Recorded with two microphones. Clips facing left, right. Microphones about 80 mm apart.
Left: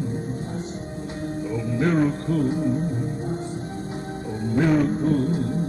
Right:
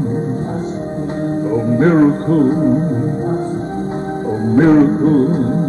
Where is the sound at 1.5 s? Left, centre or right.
Right.